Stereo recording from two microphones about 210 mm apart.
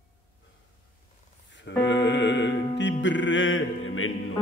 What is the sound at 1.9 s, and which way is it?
Music, 55° left (ahead or behind).